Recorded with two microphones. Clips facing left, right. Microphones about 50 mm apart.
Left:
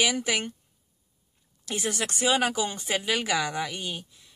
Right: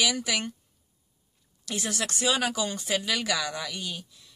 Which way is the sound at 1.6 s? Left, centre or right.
Left.